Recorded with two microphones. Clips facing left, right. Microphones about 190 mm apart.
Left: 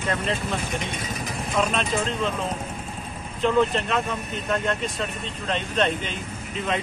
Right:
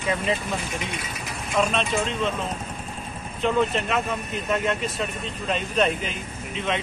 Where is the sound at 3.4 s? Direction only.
Centre (ahead or behind).